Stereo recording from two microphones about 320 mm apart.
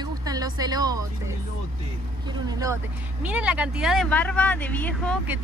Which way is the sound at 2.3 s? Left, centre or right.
Centre.